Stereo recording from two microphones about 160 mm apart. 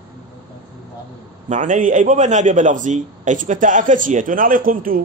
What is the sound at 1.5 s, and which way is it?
A man's voice, 50° right (ahead or behind).